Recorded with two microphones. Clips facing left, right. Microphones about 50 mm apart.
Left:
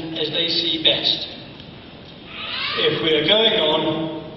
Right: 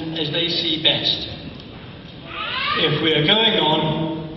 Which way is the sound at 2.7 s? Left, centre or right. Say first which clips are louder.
Left 1 dB; centre.